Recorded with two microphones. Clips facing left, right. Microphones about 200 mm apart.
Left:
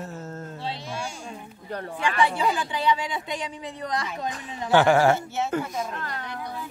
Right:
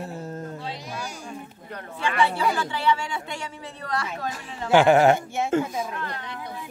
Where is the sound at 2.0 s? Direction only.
15° left (ahead or behind).